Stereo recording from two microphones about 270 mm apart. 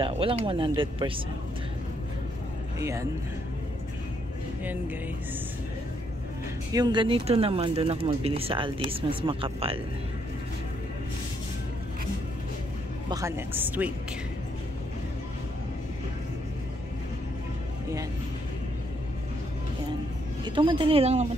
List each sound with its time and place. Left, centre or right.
0.0 s speech: centre
2.8 s speech: centre
6.7 s speech: centre
13.1 s speech: centre
20.4 s speech: centre